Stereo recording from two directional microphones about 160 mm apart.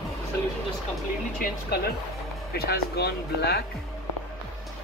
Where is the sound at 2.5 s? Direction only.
75° left (ahead or behind).